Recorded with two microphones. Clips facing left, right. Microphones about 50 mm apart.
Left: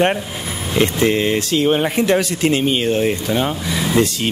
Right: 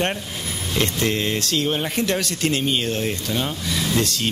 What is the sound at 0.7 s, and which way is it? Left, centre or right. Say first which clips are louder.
Speech: left 7 dB; centre.